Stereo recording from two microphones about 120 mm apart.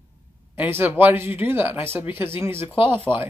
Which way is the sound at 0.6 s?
15° right (ahead or behind).